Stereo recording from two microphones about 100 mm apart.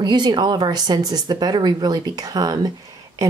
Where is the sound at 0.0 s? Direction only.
45° right (ahead or behind).